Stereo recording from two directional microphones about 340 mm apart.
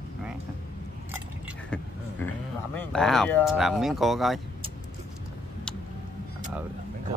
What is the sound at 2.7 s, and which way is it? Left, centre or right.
Speech, centre.